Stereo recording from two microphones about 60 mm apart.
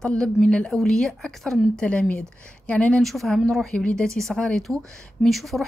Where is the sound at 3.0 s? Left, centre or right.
Centre.